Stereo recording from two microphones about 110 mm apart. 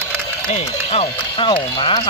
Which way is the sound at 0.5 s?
65° left (ahead or behind).